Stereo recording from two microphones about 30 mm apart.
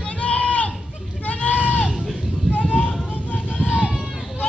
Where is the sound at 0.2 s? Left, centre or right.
Left.